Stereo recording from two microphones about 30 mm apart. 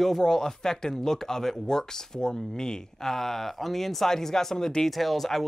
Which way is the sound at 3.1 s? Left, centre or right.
Centre.